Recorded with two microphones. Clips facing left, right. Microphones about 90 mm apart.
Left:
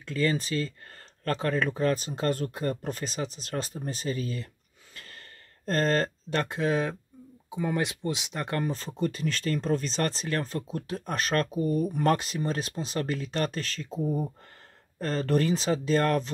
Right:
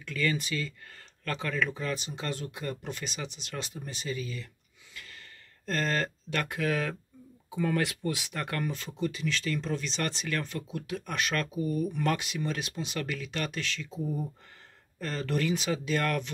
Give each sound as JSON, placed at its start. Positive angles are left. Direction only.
{"t": 0.0, "sound": "speech", "side_deg": 30}
{"t": 4.9, "sound": "gasp", "side_deg": 40}
{"t": 5.7, "sound": "speech", "side_deg": 40}